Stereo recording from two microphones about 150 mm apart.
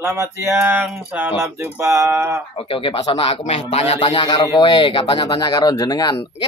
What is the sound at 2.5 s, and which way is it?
Speech, 35° left (ahead or behind).